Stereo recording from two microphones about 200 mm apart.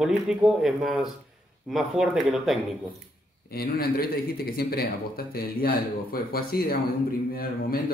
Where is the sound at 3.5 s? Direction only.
50° left (ahead or behind).